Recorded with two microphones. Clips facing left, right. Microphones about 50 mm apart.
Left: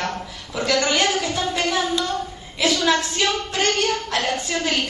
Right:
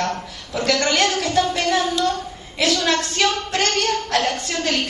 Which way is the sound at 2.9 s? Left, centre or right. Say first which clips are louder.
Right 2 dB; centre.